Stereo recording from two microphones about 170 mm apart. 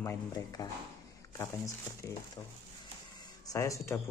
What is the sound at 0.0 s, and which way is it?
Speech, 20° left (ahead or behind).